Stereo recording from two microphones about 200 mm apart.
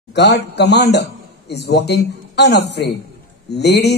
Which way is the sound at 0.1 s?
55° left (ahead or behind).